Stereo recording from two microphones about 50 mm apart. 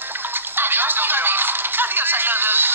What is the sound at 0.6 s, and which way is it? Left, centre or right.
Music, right.